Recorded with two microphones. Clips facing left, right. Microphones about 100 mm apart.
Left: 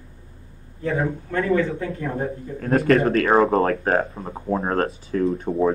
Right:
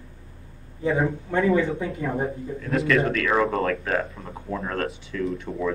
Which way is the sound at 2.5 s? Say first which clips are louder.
Left 5 dB; 45° left (ahead or behind).